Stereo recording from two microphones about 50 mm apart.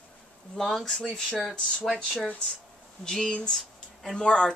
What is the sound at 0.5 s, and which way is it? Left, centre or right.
Speech, centre.